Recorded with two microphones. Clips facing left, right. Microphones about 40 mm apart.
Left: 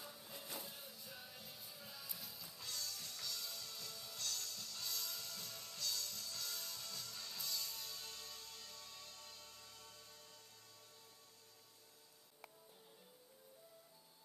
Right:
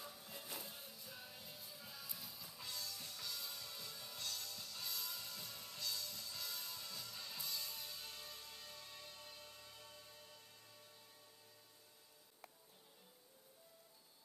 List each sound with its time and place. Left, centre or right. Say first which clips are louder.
0.0 s music: even; centre